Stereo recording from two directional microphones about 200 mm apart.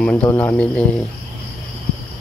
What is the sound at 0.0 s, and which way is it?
Speech, 10° left (ahead or behind).